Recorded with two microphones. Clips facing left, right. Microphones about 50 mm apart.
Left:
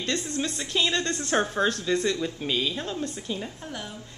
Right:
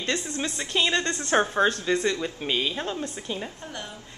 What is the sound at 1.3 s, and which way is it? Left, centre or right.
A woman's voice, centre.